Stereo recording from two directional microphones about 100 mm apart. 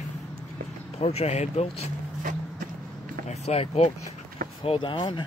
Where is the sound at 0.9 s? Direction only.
90° left.